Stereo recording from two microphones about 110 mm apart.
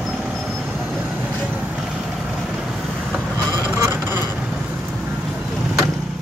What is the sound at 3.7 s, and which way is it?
Vehicle, 20° right (ahead or behind).